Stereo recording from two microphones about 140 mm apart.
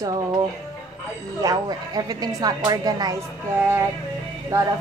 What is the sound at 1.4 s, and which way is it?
Speech, 25° right (ahead or behind).